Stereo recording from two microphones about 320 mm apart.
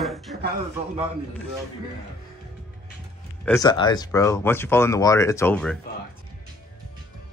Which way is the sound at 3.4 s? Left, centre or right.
Centre.